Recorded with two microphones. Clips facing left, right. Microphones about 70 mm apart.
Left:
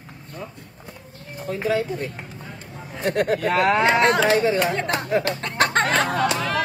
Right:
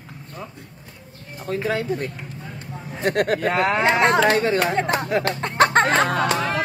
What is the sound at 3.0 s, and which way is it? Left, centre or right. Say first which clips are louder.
Speech: right 1 dB; right.